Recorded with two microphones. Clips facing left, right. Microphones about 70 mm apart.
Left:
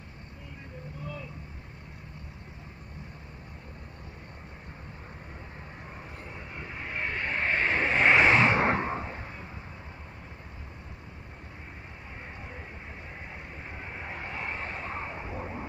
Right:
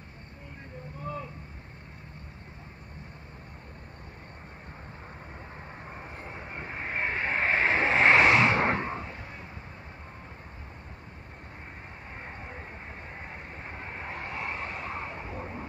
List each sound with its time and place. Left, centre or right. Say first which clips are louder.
6.5 s vehicle: right 3 dB; right
7.3 s vehicle: right 2 dB; centre
8.8 s a sound: left 2 dB; left
13.7 s vehicle: right 1 dB; centre